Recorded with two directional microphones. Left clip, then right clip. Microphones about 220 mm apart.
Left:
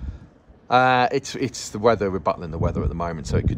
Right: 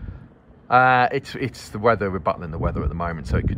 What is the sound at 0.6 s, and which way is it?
Speech, 30° left (ahead or behind).